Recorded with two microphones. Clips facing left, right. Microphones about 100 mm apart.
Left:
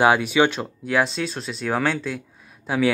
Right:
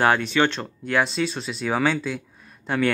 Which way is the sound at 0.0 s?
10° left (ahead or behind).